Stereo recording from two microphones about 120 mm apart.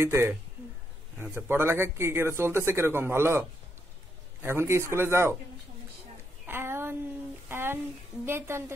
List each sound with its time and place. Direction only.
0.0 s speech: 20° right (ahead or behind)
6.4 s a sound: 20° right (ahead or behind)
8.3 s speech: 20° right (ahead or behind)